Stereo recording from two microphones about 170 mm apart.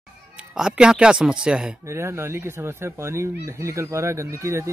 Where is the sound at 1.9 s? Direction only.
15° right (ahead or behind).